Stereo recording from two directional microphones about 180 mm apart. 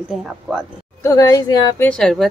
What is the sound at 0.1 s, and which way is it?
Speech, centre (ahead or behind).